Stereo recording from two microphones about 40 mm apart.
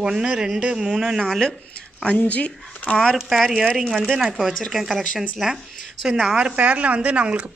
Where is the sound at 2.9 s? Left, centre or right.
Left.